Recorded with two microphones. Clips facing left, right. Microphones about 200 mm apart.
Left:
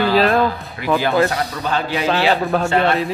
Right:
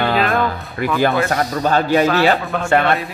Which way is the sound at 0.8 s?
50° right (ahead or behind).